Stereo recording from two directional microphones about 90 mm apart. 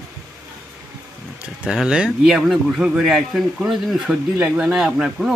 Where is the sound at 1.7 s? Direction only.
5° right (ahead or behind).